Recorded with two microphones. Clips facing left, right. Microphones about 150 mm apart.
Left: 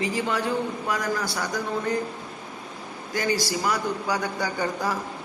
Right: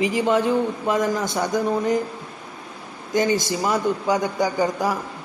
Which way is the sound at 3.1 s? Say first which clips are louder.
Right 5 dB; 20° right (ahead or behind).